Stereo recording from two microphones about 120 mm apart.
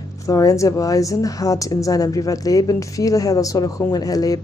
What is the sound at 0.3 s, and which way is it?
A woman's voice, 30° left (ahead or behind).